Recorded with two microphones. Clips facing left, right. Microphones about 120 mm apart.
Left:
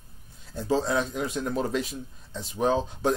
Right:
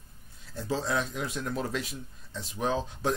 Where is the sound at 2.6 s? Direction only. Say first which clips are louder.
Left 5 dB; 30° left (ahead or behind).